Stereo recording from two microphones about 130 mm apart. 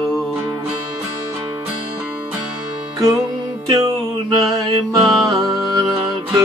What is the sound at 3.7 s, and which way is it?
Music, 25° right (ahead or behind).